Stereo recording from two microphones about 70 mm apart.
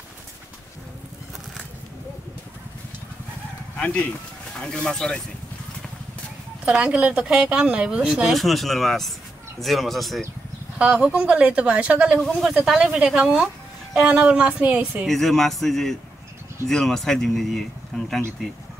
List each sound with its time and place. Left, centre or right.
3.7 s speech: centre
6.8 s speech: centre
7.5 s speech: centre
10.8 s speech: centre
12.4 s speech: centre
15.0 s speech: centre